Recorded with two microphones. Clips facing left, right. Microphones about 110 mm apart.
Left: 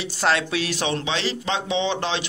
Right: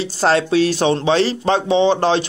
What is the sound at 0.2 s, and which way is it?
A man's voice, 35° right (ahead or behind).